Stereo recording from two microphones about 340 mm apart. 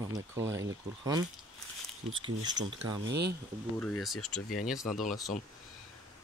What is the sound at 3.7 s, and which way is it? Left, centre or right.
Speech, centre.